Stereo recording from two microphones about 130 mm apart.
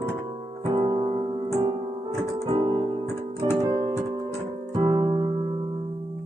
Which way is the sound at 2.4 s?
40° right (ahead or behind).